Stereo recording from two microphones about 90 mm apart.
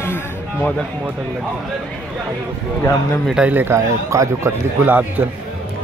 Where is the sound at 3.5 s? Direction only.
20° right (ahead or behind).